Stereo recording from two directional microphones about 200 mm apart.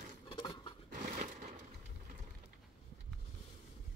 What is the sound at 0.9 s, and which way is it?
Crumpling, 40° right (ahead or behind).